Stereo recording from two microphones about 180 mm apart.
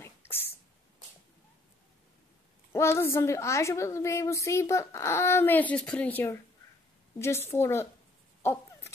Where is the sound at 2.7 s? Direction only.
15° left (ahead or behind).